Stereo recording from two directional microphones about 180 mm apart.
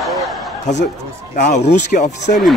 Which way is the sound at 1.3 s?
40° left (ahead or behind).